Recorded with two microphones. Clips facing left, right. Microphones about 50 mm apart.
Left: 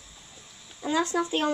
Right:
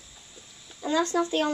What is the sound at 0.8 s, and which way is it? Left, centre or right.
Speech, centre.